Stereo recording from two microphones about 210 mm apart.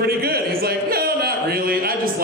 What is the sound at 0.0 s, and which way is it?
A man's voice, 45° right (ahead or behind).